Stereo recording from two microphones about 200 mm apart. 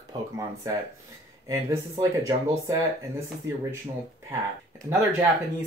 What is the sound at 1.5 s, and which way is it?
Speech, 15° right (ahead or behind).